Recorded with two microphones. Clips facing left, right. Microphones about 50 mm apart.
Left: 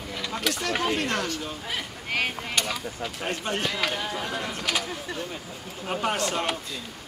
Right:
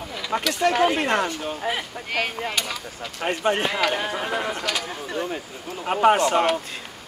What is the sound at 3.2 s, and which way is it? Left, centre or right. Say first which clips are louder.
Speech: right 7 dB; right.